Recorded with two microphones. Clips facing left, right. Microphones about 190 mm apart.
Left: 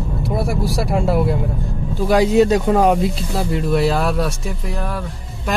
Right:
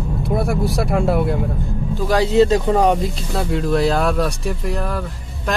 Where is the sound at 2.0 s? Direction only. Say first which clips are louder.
Left 1 dB; 10° left (ahead or behind).